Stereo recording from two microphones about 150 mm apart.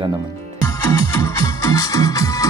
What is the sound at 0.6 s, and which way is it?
Music, 20° left (ahead or behind).